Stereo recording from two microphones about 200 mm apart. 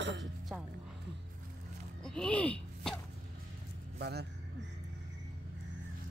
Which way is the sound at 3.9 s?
55° right (ahead or behind).